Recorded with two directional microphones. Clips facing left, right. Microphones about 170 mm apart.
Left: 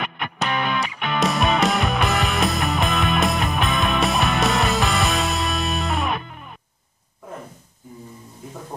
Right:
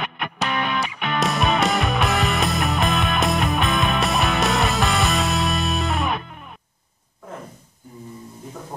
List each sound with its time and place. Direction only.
0.4 s music: centre (ahead or behind)